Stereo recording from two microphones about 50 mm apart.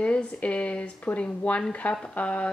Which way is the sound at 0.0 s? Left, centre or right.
Left.